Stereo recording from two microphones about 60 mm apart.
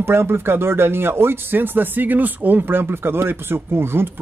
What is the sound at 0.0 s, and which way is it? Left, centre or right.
Speech, right.